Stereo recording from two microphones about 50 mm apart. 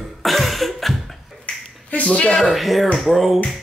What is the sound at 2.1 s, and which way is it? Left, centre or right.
Speech, centre.